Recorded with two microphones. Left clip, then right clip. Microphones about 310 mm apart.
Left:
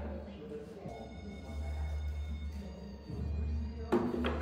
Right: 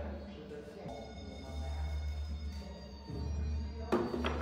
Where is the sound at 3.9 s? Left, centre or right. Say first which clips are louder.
Left 1 dB; centre.